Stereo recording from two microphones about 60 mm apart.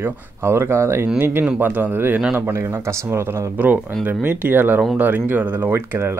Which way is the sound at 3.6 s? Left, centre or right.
Right.